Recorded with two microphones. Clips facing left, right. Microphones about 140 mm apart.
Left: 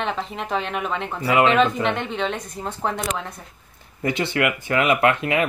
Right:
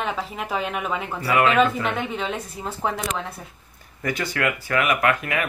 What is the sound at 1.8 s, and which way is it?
A woman's voice, 5° right (ahead or behind).